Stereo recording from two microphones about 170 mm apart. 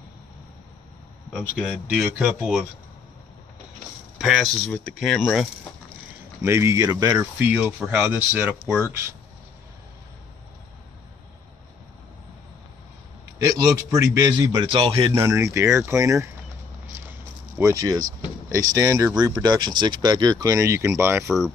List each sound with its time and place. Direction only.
2.0 s speech: 5° right (ahead or behind)
4.2 s speech: centre (ahead or behind)
6.4 s speech: 15° right (ahead or behind)
13.4 s speech: 20° right (ahead or behind)
15.1 s speech: 15° right (ahead or behind)